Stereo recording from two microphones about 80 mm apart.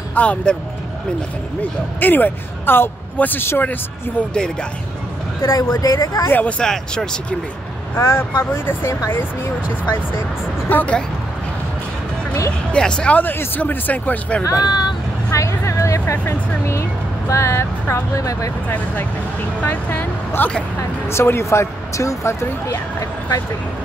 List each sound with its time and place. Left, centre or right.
0.1 s speech: centre
1.6 s speech: left
4.3 s speech: centre
5.4 s speech: left
5.7 s speech: left
6.4 s speech: centre
7.9 s speech: left
10.7 s speech: left
12.7 s speech: centre
14.4 s speech: left
15.3 s music: left
17.3 s speech: left
19.6 s speech: left